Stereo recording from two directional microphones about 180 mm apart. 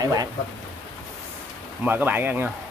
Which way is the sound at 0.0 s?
20° right (ahead or behind).